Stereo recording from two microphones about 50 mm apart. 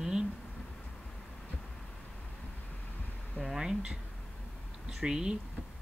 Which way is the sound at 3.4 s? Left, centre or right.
Centre.